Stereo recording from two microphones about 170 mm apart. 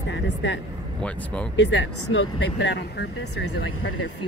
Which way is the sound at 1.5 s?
90° left.